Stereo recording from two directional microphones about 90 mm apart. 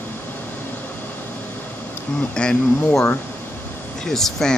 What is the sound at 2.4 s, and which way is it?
Speech, 10° left (ahead or behind).